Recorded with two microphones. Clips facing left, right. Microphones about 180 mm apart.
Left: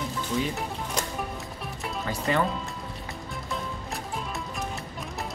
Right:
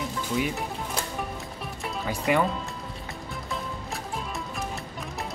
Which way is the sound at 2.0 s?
10° right (ahead or behind).